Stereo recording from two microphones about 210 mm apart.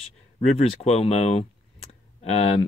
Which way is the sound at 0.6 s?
30° left (ahead or behind).